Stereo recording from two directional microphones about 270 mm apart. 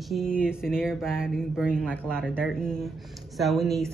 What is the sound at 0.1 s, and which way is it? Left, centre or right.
A woman's voice, centre.